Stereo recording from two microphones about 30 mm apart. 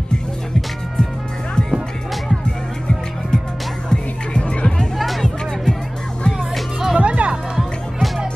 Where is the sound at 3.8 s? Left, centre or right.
Left.